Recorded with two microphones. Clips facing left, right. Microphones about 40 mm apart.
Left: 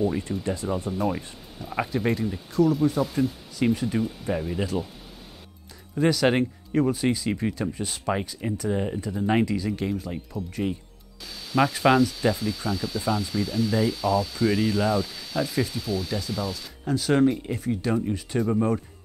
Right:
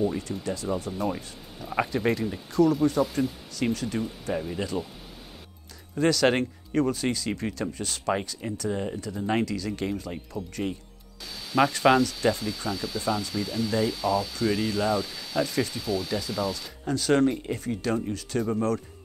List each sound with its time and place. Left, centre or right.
0.4 s speech: left
0.9 s speech: centre
3.7 s speech: centre
5.9 s speech: centre
9.7 s speech: centre